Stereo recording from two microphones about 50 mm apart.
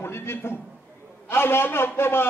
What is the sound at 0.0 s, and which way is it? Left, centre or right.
A man's voice, left.